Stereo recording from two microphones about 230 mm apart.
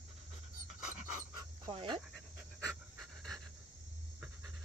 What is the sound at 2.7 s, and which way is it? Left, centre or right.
Pant, centre.